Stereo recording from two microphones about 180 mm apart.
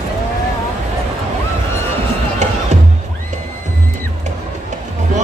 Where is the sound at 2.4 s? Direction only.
40° right (ahead or behind).